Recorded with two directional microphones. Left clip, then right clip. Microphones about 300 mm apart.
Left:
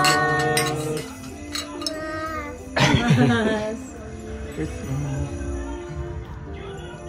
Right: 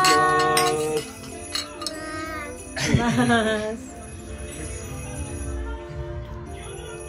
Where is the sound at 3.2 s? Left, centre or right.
Centre.